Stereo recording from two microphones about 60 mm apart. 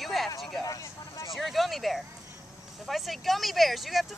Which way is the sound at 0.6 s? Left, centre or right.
Left.